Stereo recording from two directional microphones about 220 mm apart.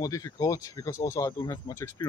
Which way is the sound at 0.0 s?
15° left (ahead or behind).